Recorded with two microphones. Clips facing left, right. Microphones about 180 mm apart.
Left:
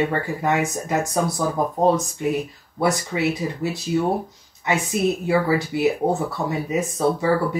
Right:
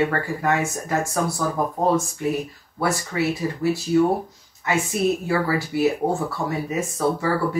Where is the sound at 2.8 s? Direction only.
20° left (ahead or behind).